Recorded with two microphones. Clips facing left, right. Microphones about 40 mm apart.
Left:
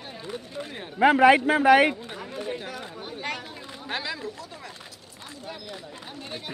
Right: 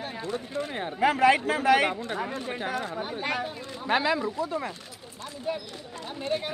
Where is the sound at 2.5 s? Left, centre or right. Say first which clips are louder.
Right 3 dB; right.